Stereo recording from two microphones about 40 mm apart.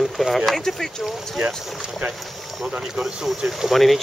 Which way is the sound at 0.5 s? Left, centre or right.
Centre.